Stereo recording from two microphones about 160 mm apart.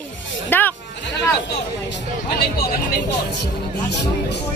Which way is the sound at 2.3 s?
70° left (ahead or behind).